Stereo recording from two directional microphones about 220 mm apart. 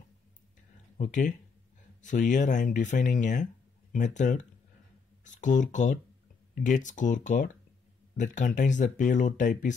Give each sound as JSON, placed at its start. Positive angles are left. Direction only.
{"t": 0.9, "sound": "speech", "side_deg": 35}